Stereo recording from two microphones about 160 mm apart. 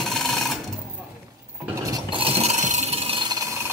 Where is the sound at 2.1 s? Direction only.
35° right (ahead or behind).